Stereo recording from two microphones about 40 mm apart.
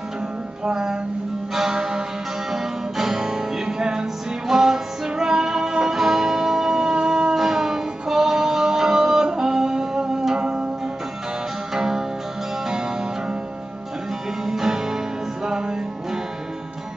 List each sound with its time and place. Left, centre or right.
0.7 s music: centre
11.7 s music: centre
14.4 s music: centre